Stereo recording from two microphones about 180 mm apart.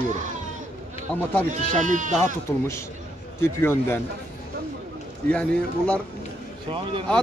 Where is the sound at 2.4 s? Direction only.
15° left (ahead or behind).